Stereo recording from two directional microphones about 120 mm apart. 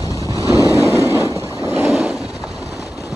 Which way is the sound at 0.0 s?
30° left (ahead or behind).